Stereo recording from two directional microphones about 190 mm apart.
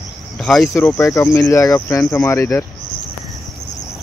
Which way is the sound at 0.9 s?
15° left (ahead or behind).